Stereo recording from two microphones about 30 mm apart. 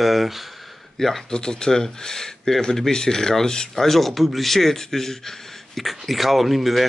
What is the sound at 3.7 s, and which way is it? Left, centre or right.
A man's voice, centre.